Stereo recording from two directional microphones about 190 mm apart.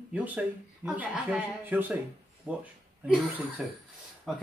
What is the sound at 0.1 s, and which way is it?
Speech, 10° right (ahead or behind).